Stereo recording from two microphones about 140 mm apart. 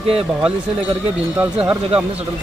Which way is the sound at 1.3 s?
10° right (ahead or behind).